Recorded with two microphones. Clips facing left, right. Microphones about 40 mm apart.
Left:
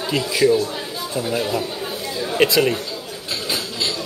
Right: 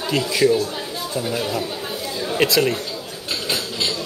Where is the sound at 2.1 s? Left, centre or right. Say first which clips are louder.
Left 2 dB; centre.